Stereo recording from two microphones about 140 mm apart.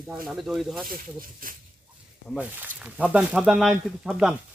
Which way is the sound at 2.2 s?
10° right (ahead or behind).